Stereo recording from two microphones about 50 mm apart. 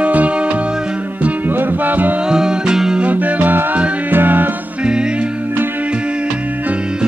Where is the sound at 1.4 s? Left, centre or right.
Right.